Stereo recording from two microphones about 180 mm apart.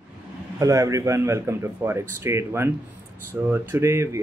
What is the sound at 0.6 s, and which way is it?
Speech, 20° right (ahead or behind).